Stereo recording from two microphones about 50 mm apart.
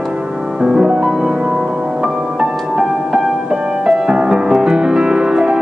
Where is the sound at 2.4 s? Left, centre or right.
Centre.